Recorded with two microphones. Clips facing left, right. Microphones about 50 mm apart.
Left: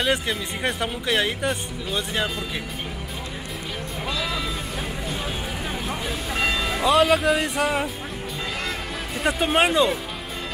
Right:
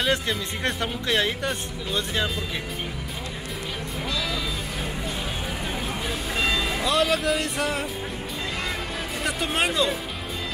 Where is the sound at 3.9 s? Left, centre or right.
Centre.